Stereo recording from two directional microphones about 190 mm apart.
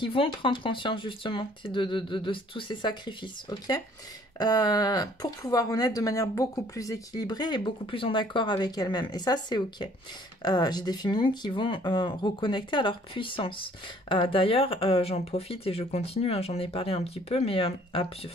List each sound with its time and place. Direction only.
0.0 s speech: 25° left (ahead or behind)